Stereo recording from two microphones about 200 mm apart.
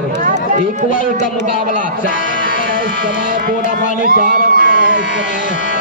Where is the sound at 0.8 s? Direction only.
40° left (ahead or behind).